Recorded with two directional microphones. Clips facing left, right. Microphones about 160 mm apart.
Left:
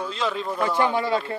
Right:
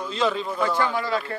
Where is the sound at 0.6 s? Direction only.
20° left (ahead or behind).